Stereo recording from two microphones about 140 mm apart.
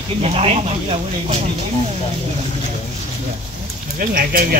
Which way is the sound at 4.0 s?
85° right.